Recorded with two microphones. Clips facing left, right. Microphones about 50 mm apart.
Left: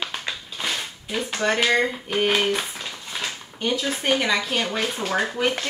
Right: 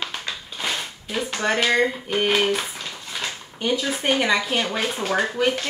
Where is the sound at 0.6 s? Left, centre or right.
Centre.